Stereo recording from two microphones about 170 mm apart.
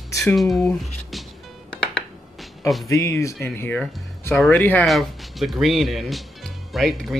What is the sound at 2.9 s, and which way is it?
Speech, 15° left (ahead or behind).